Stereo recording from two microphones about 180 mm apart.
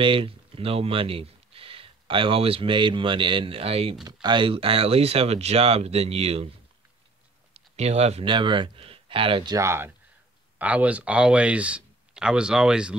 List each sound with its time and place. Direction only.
0.0 s speech: 30° right (ahead or behind)
7.5 s speech: 35° right (ahead or behind); by 12.9 s 5° right (ahead or behind)